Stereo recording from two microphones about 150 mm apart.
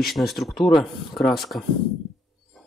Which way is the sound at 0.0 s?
Centre (ahead or behind).